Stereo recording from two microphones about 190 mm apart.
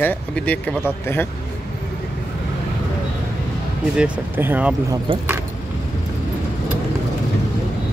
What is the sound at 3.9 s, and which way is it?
Speech, 5° right (ahead or behind).